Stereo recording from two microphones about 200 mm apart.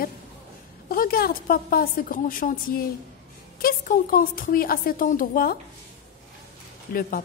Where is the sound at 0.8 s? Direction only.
45° left (ahead or behind).